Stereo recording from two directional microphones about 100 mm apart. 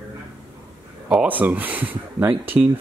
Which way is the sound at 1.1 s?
10° right (ahead or behind).